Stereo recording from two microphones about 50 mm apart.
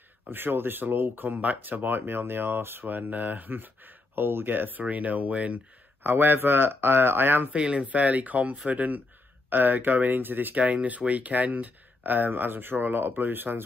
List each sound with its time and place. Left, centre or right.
0.3 s speech: right
1.4 s speech: right
6.0 s speech: right
7.5 s speech: centre
7.8 s speech: right
10.6 s speech: right